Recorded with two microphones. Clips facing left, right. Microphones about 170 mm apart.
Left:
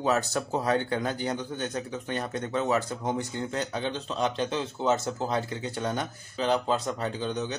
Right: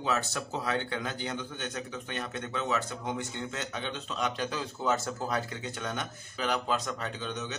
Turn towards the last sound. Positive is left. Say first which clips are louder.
# left 6 dB
turn(degrees=35)  # may be behind; listen again after turning